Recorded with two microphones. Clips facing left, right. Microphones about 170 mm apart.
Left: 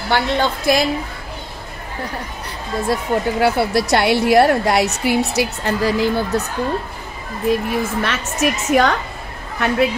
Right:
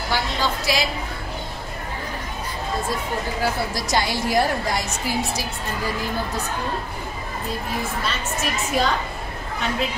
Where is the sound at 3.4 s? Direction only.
70° left (ahead or behind); by 6.4 s 85° left.